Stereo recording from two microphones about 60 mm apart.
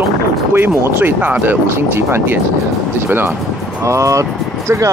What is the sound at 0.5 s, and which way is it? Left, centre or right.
Speech, right.